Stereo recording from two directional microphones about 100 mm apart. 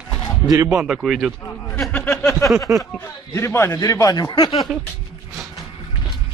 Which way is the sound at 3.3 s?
25° left (ahead or behind).